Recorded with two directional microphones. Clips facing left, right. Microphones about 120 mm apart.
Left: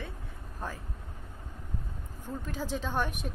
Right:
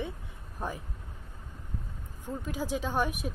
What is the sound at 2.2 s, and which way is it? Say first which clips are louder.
Speech: right 2 dB; 10° right (ahead or behind).